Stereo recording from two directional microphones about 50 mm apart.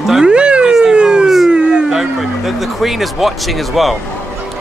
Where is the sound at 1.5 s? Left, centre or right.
Centre.